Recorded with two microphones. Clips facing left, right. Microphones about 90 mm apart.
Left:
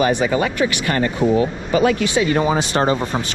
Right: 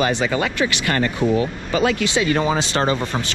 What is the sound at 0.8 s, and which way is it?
Speech, 25° left (ahead or behind).